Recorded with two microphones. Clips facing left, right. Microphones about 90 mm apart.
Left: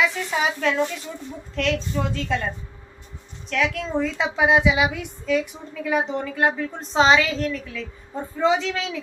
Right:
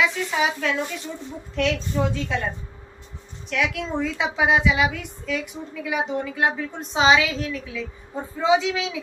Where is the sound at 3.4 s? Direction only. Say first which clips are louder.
Left 1 dB; 5° right (ahead or behind).